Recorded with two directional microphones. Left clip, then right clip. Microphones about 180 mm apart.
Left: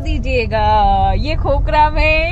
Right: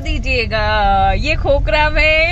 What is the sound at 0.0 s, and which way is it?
Speech, 25° right (ahead or behind).